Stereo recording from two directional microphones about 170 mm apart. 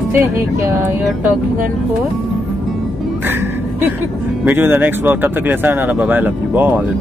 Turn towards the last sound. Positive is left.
turn(degrees=-10)  # may be behind; listen again after turning